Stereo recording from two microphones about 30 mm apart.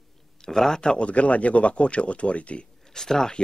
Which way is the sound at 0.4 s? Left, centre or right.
Centre.